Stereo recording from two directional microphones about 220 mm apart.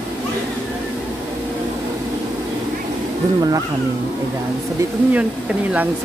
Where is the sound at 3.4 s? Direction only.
15° right (ahead or behind).